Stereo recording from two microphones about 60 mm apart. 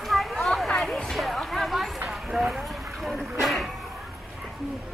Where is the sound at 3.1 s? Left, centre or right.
Centre.